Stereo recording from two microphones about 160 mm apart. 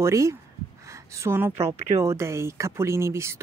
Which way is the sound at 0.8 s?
20° right (ahead or behind).